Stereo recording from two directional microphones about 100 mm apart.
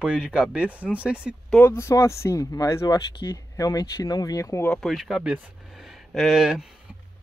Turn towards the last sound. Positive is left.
turn(degrees=-5)  # may be behind; listen again after turning